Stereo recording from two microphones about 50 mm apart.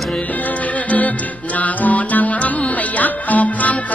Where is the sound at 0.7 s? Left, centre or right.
Left.